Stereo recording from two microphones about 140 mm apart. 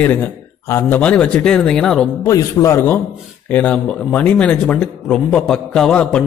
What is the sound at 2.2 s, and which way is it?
A man's voice, 20° left (ahead or behind).